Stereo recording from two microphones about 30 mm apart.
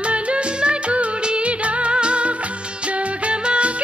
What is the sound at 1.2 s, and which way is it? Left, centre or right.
Music of bollywood, right.